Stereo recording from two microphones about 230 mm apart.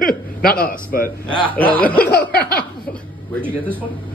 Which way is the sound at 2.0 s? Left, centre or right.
Left.